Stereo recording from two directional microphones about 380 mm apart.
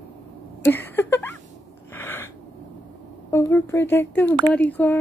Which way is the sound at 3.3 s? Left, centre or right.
Centre.